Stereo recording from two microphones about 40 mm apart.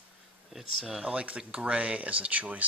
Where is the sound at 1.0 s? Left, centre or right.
Right.